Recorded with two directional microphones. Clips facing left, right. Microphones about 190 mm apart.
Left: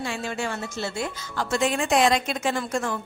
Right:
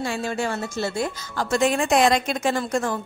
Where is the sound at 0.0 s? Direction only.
40° right (ahead or behind).